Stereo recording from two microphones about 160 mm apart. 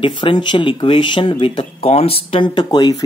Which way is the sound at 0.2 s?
30° left (ahead or behind).